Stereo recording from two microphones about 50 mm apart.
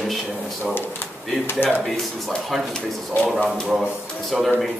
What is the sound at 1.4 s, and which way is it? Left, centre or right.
Speech, left.